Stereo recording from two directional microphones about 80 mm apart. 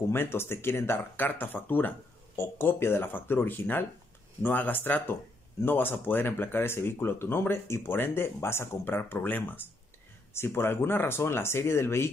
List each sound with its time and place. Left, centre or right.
0.1 s speech: left